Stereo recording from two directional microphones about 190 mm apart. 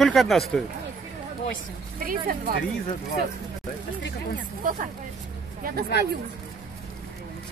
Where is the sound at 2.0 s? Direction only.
50° right (ahead or behind).